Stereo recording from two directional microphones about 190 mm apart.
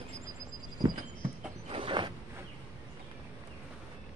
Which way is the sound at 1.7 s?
25° right (ahead or behind).